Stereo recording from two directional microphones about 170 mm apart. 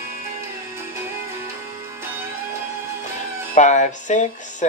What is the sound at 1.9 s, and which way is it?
Music, 15° right (ahead or behind).